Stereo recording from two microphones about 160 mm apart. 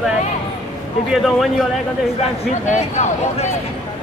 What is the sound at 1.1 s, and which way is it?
Speech, centre (ahead or behind).